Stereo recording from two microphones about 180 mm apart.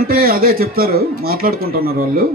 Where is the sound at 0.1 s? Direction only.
55° right (ahead or behind).